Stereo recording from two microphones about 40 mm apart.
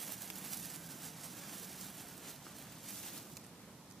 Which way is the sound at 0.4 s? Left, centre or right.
Centre.